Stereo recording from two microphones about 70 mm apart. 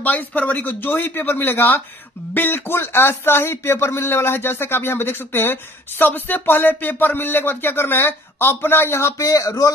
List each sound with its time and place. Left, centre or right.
0.0 s speech: left